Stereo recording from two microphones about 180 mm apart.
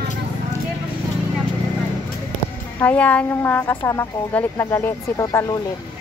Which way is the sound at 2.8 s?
10° left (ahead or behind).